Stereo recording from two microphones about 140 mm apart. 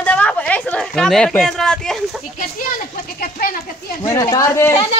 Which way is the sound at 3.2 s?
90° left.